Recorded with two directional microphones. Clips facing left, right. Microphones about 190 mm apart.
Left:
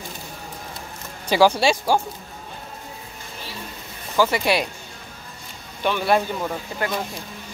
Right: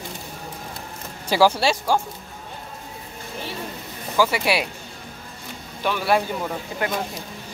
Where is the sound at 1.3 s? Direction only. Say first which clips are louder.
Left 1 dB; 5° right (ahead or behind).